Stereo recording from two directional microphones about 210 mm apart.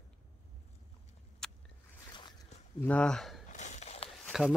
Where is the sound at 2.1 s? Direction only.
20° left (ahead or behind).